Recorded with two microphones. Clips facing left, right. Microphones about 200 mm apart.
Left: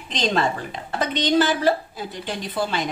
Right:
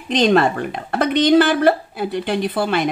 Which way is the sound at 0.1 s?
60° right (ahead or behind).